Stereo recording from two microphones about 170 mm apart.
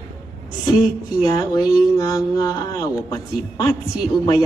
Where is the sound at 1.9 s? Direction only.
20° left (ahead or behind).